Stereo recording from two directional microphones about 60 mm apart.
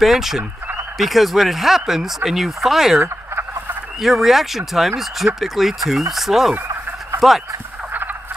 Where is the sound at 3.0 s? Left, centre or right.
Right.